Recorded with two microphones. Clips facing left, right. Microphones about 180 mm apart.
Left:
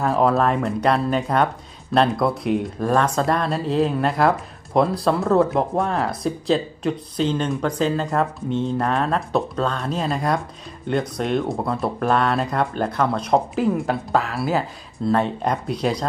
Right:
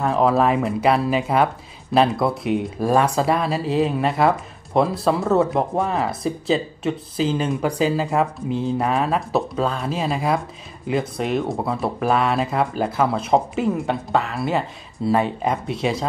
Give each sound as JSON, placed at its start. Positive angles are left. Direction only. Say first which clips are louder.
{"t": 0.0, "sound": "speech", "louder": "right 1 dB", "side_deg": 0}